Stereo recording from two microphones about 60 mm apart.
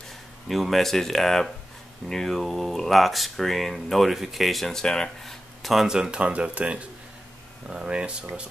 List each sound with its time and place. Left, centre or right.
0.5 s speech: centre
5.9 s speech: centre